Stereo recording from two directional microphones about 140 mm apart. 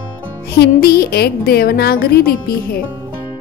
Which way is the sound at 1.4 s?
90° left.